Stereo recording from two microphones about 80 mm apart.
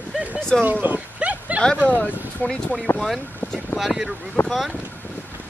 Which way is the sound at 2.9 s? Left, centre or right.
Centre.